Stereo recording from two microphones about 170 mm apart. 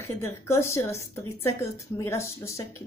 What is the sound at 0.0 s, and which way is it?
A woman's voice, 15° left (ahead or behind).